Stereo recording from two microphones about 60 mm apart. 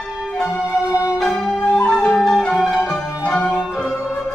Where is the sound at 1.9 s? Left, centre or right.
Centre.